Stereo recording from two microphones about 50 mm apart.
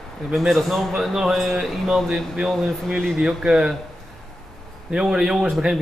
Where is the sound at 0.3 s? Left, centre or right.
Centre.